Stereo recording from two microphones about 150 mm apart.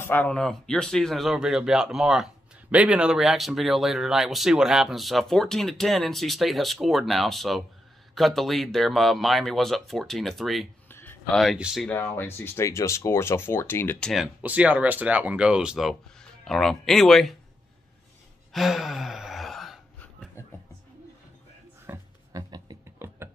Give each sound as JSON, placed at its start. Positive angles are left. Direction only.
{"t": 0.0, "sound": "speech", "side_deg": 15}
{"t": 10.9, "sound": "a sound", "side_deg": 15}
{"t": 11.3, "sound": "speech", "side_deg": -5}
{"t": 11.8, "sound": "speech", "side_deg": 10}
{"t": 18.5, "sound": "gasp", "side_deg": 0}
{"t": 21.8, "sound": "music", "side_deg": -20}
{"t": 22.9, "sound": "a sound", "side_deg": -15}